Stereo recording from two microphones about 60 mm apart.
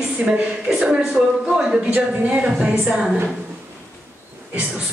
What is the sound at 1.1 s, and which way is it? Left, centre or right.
Speech, centre.